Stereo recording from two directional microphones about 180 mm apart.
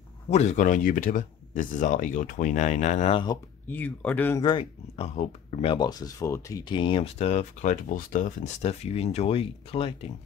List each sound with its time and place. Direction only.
0.3 s speech: 40° left (ahead or behind)
3.7 s speech: 10° left (ahead or behind)
4.4 s speech: 25° left (ahead or behind)